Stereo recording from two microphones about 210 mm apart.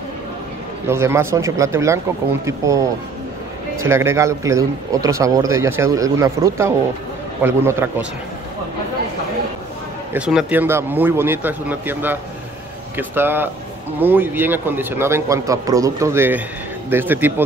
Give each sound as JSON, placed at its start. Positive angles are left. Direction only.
{"t": 0.8, "sound": "a man's voice", "side_deg": -10}
{"t": 10.1, "sound": "a man's voice", "side_deg": -5}